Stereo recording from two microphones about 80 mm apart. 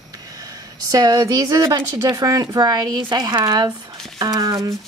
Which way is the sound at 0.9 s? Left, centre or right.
Right.